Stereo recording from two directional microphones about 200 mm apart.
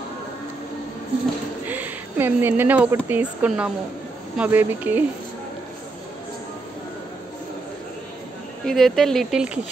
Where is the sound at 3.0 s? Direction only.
5° right (ahead or behind).